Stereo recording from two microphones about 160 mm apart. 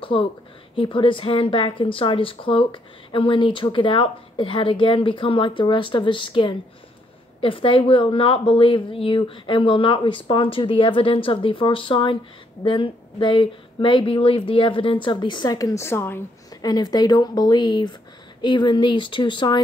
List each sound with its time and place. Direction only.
0.0 s a woman's voice: 35° left (ahead or behind); by 16.2 s 15° left (ahead or behind)
16.6 s speech: 25° left (ahead or behind)